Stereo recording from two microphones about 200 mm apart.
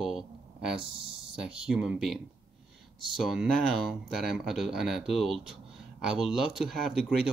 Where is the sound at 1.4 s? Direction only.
5° right (ahead or behind).